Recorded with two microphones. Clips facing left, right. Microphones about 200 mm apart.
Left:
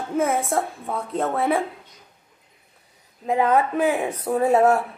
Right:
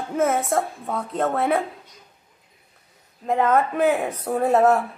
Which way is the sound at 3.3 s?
5° left (ahead or behind).